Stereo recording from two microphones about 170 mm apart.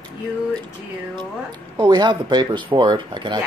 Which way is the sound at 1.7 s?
25° right (ahead or behind).